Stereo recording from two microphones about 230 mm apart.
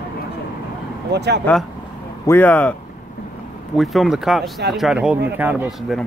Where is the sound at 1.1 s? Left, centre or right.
Right.